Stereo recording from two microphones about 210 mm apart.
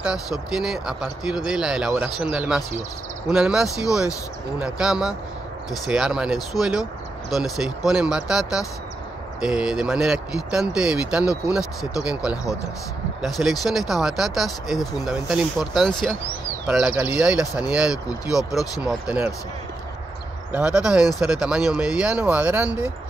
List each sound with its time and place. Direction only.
0.0 s speech: 5° right (ahead or behind)
18.3 s speech: 15° left (ahead or behind)
18.8 s speech: 5° right (ahead or behind)
20.5 s speech: 5° right (ahead or behind)